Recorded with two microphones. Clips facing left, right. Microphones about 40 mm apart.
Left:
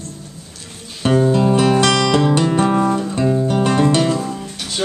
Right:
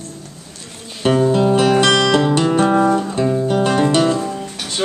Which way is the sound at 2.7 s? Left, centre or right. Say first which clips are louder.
Right 2 dB; centre.